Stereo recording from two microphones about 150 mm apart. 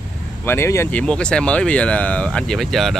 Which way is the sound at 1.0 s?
5° left (ahead or behind).